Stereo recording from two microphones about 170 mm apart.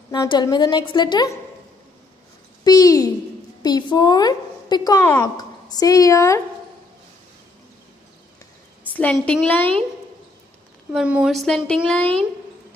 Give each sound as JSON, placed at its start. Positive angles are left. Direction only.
{"t": 0.1, "sound": "a woman's voice", "side_deg": 25}
{"t": 2.6, "sound": "a woman's voice", "side_deg": 20}
{"t": 5.0, "sound": "a woman's voice", "side_deg": 10}
{"t": 5.4, "sound": "a woman's voice", "side_deg": 20}
{"t": 8.9, "sound": "a woman's voice", "side_deg": 10}
{"t": 10.9, "sound": "speech", "side_deg": -5}